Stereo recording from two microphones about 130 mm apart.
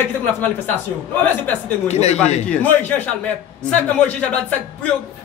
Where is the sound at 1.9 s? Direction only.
60° left (ahead or behind).